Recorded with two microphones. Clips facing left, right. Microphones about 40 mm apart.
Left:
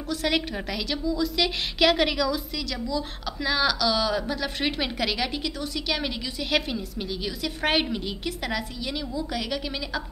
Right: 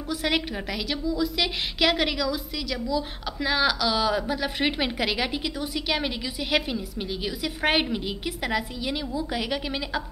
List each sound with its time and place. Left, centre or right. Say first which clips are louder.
0.1 s a woman's voice: even; centre